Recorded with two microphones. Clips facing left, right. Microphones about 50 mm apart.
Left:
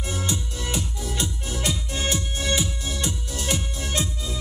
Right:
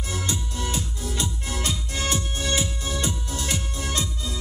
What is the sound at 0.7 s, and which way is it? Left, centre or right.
Music, left.